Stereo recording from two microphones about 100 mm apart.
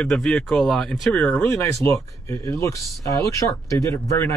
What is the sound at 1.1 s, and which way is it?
Speech, 15° left (ahead or behind).